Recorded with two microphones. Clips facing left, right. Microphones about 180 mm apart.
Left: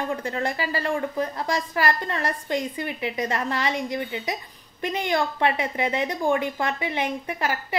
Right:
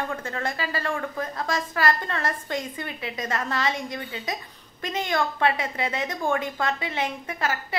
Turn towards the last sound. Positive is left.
turn(degrees=15)  # may be behind; listen again after turning